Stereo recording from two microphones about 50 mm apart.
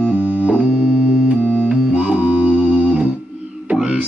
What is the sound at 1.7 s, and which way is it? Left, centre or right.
Music, right.